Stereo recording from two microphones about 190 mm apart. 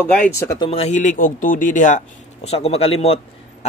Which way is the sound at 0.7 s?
35° left (ahead or behind).